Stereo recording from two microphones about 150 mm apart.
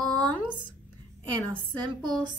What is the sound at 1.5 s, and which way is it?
Speech, 30° right (ahead or behind).